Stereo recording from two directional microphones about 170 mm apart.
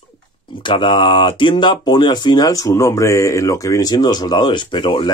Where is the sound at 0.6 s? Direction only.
30° left (ahead or behind).